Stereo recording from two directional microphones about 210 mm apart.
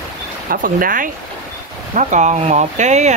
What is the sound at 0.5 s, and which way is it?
Speech, 40° right (ahead or behind).